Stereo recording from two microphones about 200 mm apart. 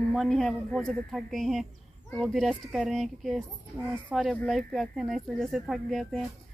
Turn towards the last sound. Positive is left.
turn(degrees=0)  # may be behind; listen again after turning